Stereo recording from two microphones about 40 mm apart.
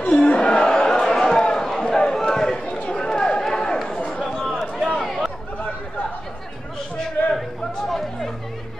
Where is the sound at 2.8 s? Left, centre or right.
Centre.